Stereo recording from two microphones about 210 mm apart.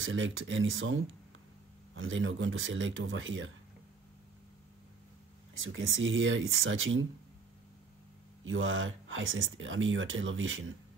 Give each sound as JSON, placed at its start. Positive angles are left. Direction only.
{"t": 0.0, "sound": "speech", "side_deg": -70}
{"t": 5.5, "sound": "speech", "side_deg": -70}
{"t": 8.5, "sound": "speech", "side_deg": -65}